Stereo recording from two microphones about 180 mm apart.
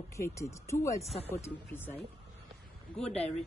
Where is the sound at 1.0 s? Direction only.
35° left (ahead or behind).